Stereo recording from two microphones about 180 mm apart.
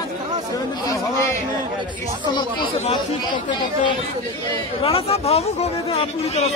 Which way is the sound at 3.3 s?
25° left (ahead or behind).